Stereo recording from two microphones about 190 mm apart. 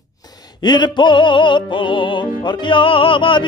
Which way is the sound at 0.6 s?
25° left (ahead or behind).